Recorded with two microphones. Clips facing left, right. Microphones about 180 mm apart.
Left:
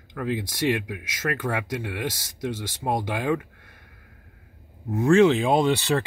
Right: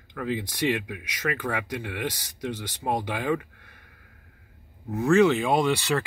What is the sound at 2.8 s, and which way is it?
Speech, 15° left (ahead or behind).